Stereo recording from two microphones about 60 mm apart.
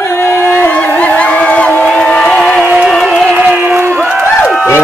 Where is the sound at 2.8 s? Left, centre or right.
Centre.